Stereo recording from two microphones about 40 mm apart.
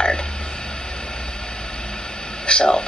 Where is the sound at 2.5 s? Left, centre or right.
Centre.